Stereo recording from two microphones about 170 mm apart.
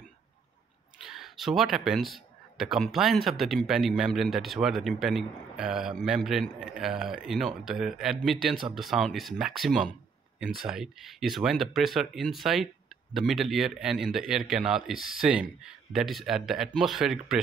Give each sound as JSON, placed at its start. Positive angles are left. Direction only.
{"t": 1.0, "sound": "speech", "side_deg": 0}